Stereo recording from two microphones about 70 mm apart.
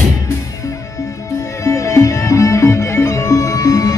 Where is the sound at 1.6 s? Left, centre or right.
Left.